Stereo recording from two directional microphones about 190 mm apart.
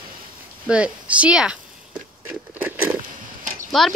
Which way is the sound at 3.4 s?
45° right (ahead or behind).